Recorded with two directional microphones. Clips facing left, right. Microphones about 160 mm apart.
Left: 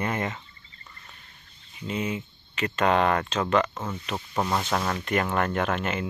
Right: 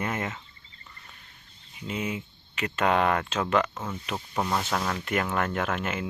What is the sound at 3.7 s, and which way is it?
Speech, 10° left (ahead or behind).